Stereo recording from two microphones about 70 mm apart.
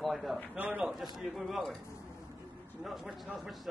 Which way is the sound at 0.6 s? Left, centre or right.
Right.